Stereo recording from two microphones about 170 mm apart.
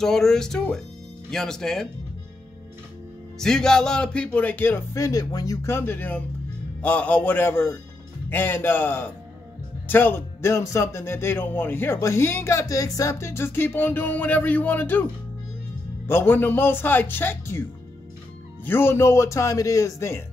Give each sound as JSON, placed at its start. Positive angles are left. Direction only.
{"t": 0.0, "sound": "speech", "side_deg": 5}
{"t": 3.3, "sound": "speech", "side_deg": 5}
{"t": 16.1, "sound": "speech", "side_deg": 15}
{"t": 18.7, "sound": "speech", "side_deg": 15}